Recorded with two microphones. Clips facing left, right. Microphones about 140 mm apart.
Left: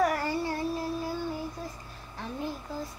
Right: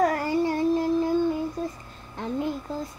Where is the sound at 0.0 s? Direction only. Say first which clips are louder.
Right 5 dB; 20° right (ahead or behind).